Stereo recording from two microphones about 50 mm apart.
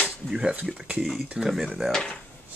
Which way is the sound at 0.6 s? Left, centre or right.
Right.